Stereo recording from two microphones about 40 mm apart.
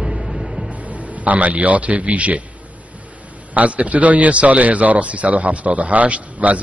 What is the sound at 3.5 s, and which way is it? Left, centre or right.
A man's voice, right.